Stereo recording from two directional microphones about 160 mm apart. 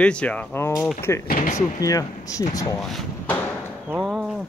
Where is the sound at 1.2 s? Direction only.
60° left (ahead or behind).